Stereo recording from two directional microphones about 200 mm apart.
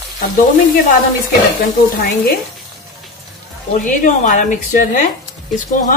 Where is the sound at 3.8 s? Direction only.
40° left (ahead or behind).